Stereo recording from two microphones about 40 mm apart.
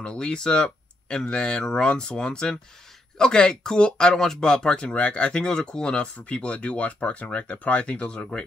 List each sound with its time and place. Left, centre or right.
0.0 s speech: left
4.9 s speech: left
6.2 s speech: left